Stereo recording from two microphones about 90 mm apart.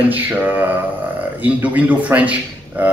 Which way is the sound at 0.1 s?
20° right (ahead or behind).